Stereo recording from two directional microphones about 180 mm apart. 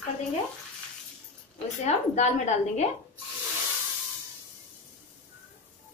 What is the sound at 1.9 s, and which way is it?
A woman's voice, 40° left (ahead or behind).